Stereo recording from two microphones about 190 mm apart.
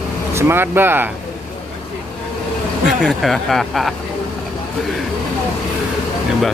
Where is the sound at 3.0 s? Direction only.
Centre (ahead or behind).